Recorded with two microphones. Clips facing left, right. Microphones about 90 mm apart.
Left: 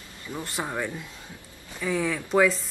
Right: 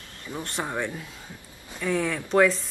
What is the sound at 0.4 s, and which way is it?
A woman's voice, 5° left (ahead or behind).